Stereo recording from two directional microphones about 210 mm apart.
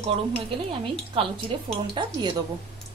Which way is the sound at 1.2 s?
25° right (ahead or behind).